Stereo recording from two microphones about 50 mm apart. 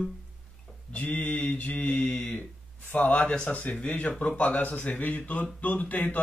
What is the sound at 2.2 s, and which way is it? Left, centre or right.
Speech, left.